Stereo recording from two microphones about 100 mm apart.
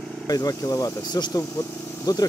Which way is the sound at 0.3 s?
40° left (ahead or behind).